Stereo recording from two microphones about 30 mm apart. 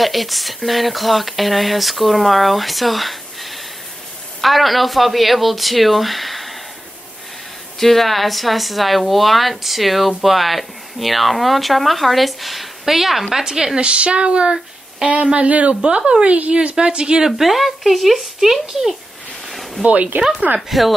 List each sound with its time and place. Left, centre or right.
0.0 s speech: centre
7.8 s speech: centre
13.7 s speech: right
15.3 s speech: right
16.5 s speech: right
17.4 s speech: centre
19.5 s a sound: centre
19.8 s speech: right
20.7 s speech: centre